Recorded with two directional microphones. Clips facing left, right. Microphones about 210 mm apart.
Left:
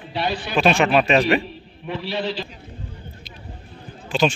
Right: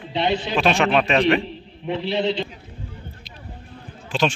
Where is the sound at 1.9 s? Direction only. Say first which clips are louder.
Right 4 dB; 25° right (ahead or behind).